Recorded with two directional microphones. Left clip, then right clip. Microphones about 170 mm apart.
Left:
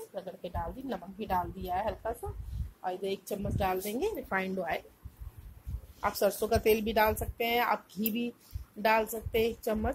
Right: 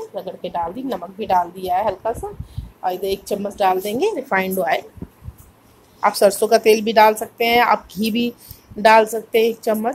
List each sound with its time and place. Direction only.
0.1 s a woman's voice: 5° left (ahead or behind)
5.9 s a woman's voice: centre (ahead or behind)